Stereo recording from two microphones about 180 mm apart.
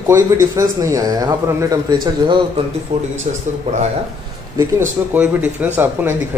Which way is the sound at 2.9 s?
40° right (ahead or behind).